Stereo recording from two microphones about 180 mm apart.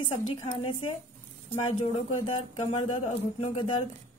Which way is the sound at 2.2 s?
30° left (ahead or behind).